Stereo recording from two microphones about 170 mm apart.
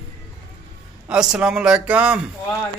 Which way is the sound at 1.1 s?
5° right (ahead or behind).